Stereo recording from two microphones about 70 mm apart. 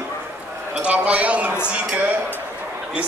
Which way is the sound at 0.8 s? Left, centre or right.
Centre.